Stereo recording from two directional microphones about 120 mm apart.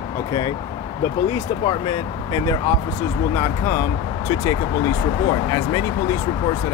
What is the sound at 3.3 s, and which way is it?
Speech, 25° left (ahead or behind).